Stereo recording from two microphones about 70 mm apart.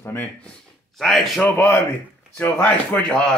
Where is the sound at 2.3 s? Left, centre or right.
Left.